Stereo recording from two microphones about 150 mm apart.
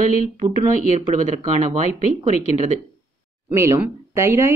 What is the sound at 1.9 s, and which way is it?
Speech, 45° left (ahead or behind).